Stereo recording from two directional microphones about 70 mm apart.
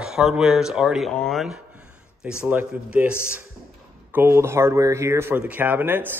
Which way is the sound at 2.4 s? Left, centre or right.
Right.